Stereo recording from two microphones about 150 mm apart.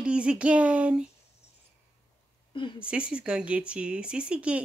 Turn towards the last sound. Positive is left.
turn(degrees=-10)  # may be behind; listen again after turning